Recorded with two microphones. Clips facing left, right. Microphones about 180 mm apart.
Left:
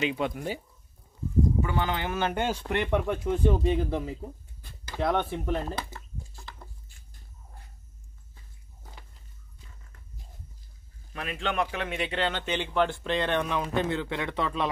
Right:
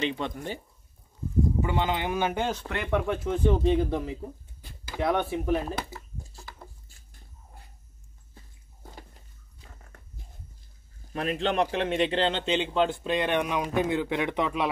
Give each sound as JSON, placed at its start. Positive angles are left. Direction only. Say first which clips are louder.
{"t": 0.0, "sound": "speech", "louder": "left 1 dB", "side_deg": 5}
{"t": 1.6, "sound": "speech", "louder": "right 1 dB", "side_deg": -20}
{"t": 2.3, "sound": "speech", "louder": "left 2 dB", "side_deg": 5}
{"t": 4.6, "sound": "a sound", "louder": "even", "side_deg": -10}
{"t": 9.7, "sound": "dog", "louder": "right 7 dB", "side_deg": -55}
{"t": 11.1, "sound": "a man's voice", "louder": "right 4 dB", "side_deg": -40}